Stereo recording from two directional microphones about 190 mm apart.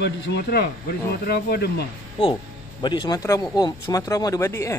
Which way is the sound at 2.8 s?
25° left (ahead or behind).